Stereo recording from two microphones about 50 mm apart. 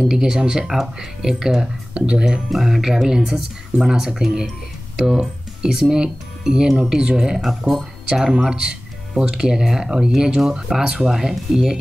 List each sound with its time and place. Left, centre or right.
0.1 s speech: centre
1.6 s speech: centre
2.5 s speech: centre
7.7 s speech: right
8.1 s speech: centre